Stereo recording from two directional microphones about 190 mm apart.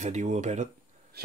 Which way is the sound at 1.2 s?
55° right (ahead or behind).